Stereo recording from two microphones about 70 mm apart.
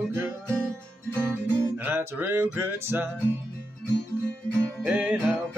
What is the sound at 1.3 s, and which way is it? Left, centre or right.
Music, right.